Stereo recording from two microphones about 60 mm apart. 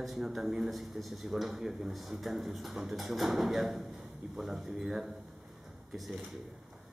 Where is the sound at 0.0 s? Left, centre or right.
Centre.